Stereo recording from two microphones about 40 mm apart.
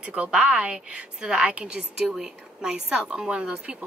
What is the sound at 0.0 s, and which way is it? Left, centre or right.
A woman's voice, right.